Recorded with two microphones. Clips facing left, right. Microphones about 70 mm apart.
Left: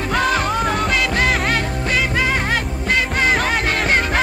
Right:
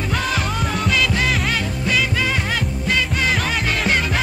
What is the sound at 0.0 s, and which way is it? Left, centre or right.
Music, left.